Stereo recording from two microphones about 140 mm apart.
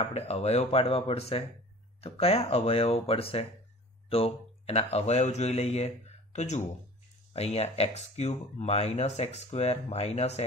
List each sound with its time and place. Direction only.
0.0 s speech: 50° left (ahead or behind)